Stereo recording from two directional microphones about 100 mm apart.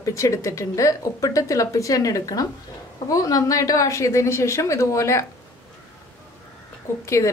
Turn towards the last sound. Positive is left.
turn(degrees=30)  # may be behind; listen again after turning